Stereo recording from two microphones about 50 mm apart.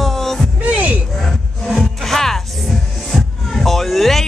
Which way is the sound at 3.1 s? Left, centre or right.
Centre.